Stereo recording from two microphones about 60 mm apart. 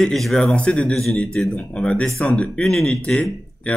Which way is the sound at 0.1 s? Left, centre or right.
Centre.